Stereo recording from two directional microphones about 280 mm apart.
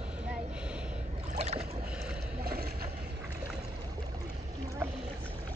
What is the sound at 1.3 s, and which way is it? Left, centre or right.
Boat, right.